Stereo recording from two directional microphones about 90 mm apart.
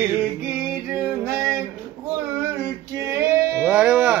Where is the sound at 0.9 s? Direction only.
30° right (ahead or behind).